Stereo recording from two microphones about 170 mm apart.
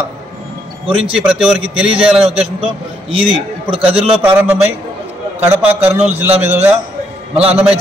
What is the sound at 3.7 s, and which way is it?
Speech, 35° right (ahead or behind).